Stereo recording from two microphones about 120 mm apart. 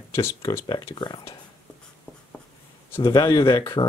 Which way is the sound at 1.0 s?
40° left (ahead or behind).